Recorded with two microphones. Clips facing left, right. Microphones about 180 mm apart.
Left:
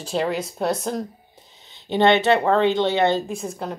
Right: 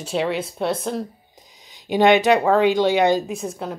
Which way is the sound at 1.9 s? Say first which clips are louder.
Right 2 dB; 10° right (ahead or behind).